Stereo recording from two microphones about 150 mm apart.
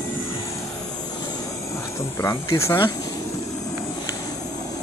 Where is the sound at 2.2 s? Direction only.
20° left (ahead or behind).